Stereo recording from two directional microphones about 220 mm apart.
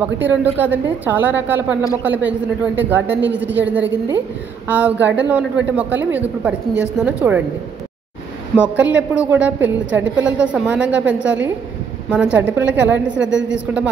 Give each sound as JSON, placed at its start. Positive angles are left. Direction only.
{"t": 0.0, "sound": "a woman's voice", "side_deg": -10}
{"t": 8.5, "sound": "a woman's voice", "side_deg": -5}
{"t": 13.3, "sound": "a man's voice", "side_deg": -55}